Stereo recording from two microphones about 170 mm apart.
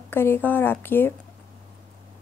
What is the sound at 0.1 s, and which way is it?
Speech, 15° left (ahead or behind).